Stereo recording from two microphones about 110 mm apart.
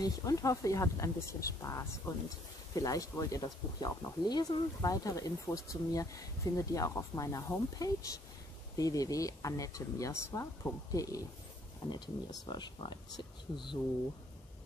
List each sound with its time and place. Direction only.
0.0 s speech: 30° left (ahead or behind)